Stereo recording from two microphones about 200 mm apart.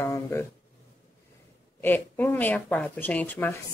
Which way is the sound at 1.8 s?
10° left (ahead or behind).